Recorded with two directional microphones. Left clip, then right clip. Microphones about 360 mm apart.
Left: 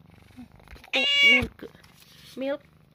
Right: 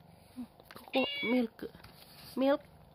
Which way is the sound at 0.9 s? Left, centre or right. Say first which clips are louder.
Left 12 dB; left.